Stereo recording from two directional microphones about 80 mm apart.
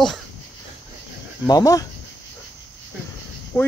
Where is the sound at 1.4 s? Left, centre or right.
Left.